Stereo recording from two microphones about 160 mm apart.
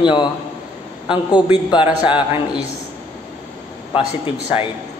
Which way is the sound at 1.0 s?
30° left (ahead or behind).